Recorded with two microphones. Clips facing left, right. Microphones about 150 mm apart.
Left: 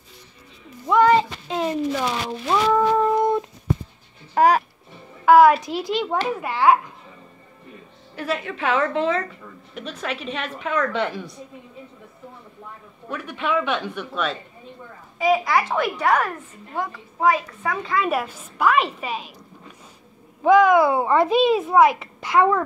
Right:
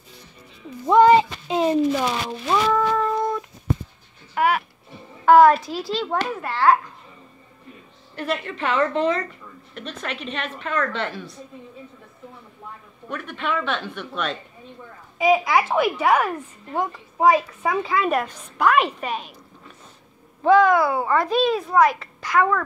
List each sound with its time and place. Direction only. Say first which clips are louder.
0.8 s a sound: right 3 dB; 20° right (ahead or behind)
1.9 s a woman's voice: right 2 dB; 10° right (ahead or behind)
2.4 s a woman's voice: left 1 dB; 5° left (ahead or behind)
3.0 s cat: left 4 dB; 20° left (ahead or behind)
4.4 s speech: left 4 dB; 40° left (ahead or behind)
5.2 s a woman's voice: even; 10° left (ahead or behind)
5.6 s a child's voice: left 2 dB; 20° left (ahead or behind)
8.2 s a woman's voice: even; 5° left (ahead or behind)
13.1 s a woman's voice: left 2 dB; 5° left (ahead or behind)
16.7 s a woman's voice: right 3 dB; 15° right (ahead or behind)
17.8 s a woman's voice: right 1 dB; centre (ahead or behind)
20.4 s a child's voice: left 1 dB; 15° left (ahead or behind)